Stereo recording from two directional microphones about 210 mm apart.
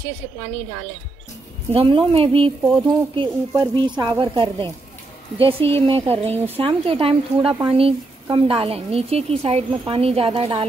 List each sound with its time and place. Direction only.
1.7 s speech: 25° right (ahead or behind)